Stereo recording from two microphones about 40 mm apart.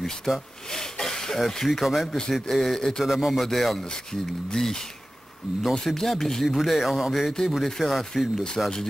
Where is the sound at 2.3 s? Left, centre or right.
Centre.